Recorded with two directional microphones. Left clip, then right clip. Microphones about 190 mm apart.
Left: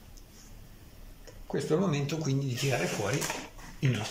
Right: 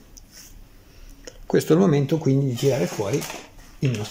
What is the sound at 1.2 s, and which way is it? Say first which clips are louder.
Speech: right 12 dB; 55° right (ahead or behind).